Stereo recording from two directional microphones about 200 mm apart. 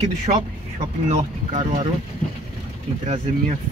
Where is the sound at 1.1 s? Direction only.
35° right (ahead or behind).